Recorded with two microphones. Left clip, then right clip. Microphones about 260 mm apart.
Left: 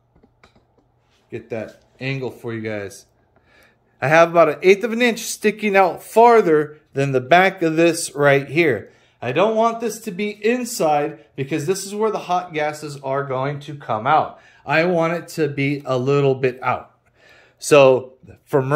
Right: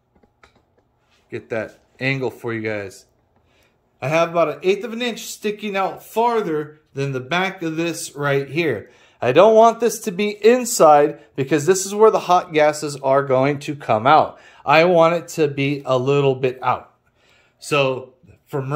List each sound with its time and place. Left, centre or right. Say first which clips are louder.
1.3 s speech: right 3 dB; centre
3.5 s speech: left 5 dB; centre
8.9 s speech: right 6 dB; centre; by 14.2 s right
14.3 s speech: right 5 dB; centre
17.3 s a sound: left 7 dB; centre